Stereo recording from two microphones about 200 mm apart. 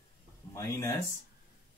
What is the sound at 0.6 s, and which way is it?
Speech, 15° left (ahead or behind).